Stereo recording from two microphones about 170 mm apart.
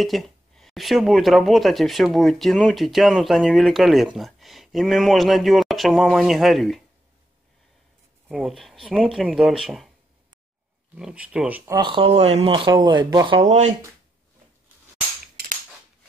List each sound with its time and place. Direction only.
0.0 s speech: centre (ahead or behind)
8.3 s speech: centre (ahead or behind)
11.0 s speech: 5° right (ahead or behind)
11.8 s speech: 30° right (ahead or behind)
13.4 s speech: 40° right (ahead or behind)
15.3 s a sound: 45° right (ahead or behind)